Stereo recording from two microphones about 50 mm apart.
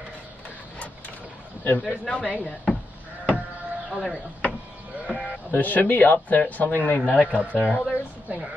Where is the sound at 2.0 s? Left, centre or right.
Centre.